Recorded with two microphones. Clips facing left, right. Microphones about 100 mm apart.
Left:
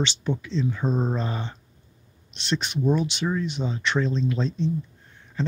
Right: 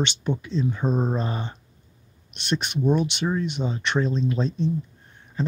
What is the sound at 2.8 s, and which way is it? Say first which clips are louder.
Speech: right 1 dB; 20° right (ahead or behind).